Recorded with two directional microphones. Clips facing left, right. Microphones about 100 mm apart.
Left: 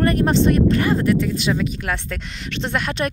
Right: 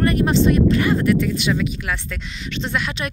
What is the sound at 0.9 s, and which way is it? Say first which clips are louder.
Speech: even; 30° left (ahead or behind).